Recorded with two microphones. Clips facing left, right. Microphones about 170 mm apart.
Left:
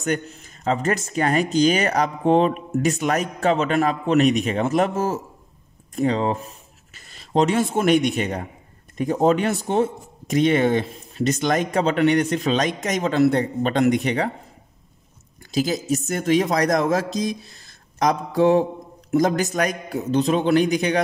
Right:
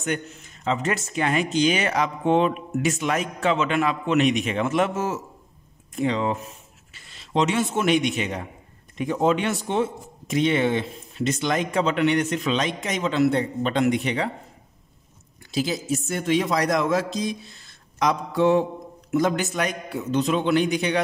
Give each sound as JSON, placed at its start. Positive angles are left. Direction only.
{"t": 0.7, "sound": "speech", "side_deg": 40}
{"t": 15.5, "sound": "speech", "side_deg": 45}